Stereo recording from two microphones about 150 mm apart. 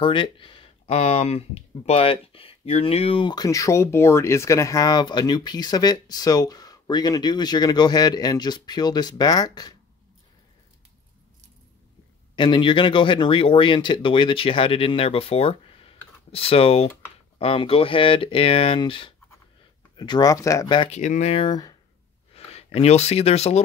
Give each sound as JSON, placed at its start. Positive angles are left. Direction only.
{"t": 0.0, "sound": "speech", "side_deg": 35}
{"t": 12.4, "sound": "speech", "side_deg": 30}
{"t": 20.9, "sound": "speech", "side_deg": 50}